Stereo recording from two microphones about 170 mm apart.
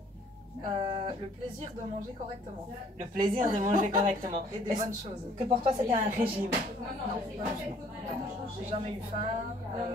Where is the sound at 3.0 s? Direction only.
50° right (ahead or behind).